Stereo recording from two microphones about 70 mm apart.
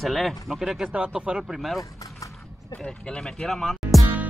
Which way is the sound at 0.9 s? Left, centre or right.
Centre.